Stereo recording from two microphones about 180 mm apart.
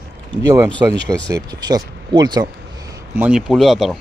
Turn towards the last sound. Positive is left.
turn(degrees=0)  # may be behind; listen again after turning